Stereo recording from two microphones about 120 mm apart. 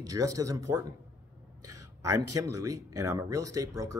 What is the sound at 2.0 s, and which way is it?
Speech, 30° right (ahead or behind).